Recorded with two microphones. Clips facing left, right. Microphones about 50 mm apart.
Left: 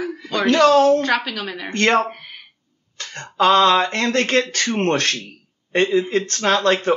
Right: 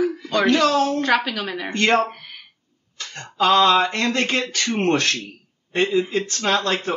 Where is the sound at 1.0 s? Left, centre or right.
Centre.